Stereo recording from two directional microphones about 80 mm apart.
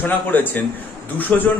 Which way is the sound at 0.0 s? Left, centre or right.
Left.